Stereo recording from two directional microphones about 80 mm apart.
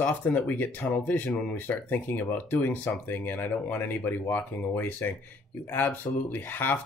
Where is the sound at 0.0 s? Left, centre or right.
Left.